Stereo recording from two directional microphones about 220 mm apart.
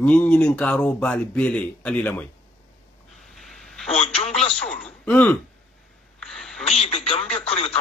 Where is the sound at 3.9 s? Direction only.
30° left (ahead or behind).